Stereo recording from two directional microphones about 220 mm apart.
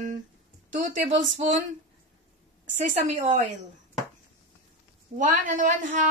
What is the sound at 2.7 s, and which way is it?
Speech, 30° right (ahead or behind).